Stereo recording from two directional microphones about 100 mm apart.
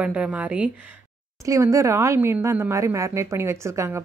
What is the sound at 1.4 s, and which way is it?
Speech, 30° right (ahead or behind).